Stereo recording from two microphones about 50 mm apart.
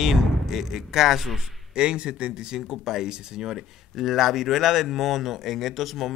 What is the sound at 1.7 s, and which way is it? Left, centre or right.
Speech, centre.